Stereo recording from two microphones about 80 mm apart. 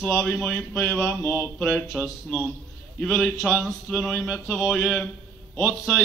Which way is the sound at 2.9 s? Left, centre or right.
Centre.